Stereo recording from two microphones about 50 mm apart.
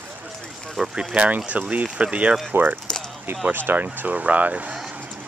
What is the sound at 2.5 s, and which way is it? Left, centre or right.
Speech, right.